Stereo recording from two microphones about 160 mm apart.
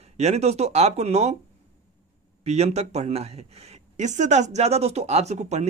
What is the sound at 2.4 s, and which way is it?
Speech, 40° right (ahead or behind).